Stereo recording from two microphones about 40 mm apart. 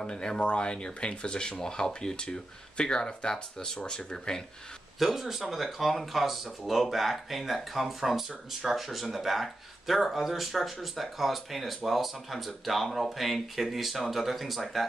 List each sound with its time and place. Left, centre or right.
0.0 s speech: centre
4.9 s speech: centre